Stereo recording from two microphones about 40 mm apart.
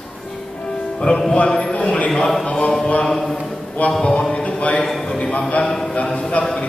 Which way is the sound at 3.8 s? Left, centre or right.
Left.